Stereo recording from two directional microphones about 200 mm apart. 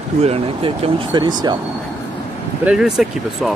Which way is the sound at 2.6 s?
5° right (ahead or behind).